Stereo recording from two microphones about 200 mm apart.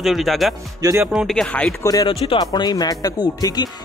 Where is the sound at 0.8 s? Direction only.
15° right (ahead or behind).